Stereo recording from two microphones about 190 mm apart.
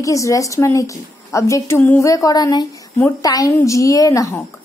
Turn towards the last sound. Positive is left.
turn(degrees=15)  # may be behind; listen again after turning